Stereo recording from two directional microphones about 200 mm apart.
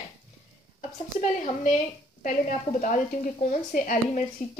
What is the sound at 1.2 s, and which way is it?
A woman's voice, 35° left (ahead or behind).